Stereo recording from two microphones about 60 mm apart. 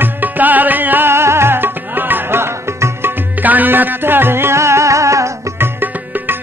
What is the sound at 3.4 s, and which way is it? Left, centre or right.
Music, right.